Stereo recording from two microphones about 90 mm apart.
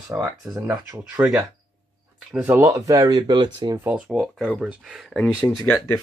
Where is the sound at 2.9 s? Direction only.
50° right (ahead or behind).